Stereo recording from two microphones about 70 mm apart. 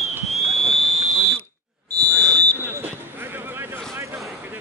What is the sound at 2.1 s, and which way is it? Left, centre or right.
Fire alarm, centre.